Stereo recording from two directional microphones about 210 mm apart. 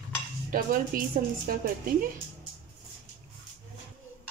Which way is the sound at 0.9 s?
45° right (ahead or behind).